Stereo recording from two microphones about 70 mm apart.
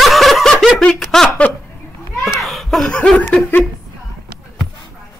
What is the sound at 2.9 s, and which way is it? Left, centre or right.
Laughter, centre.